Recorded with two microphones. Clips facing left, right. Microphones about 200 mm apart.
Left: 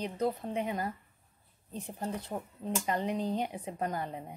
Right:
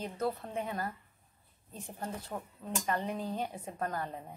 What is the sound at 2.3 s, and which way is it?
A woman's voice, 20° left (ahead or behind).